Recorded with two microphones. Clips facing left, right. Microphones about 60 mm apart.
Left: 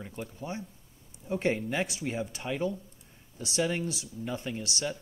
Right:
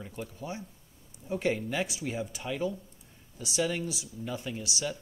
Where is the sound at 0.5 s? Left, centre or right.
Left.